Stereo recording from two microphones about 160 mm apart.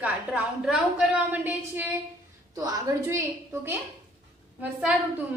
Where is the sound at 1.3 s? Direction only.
10° right (ahead or behind).